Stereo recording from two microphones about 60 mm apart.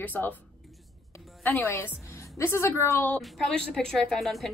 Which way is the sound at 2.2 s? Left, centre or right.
Left.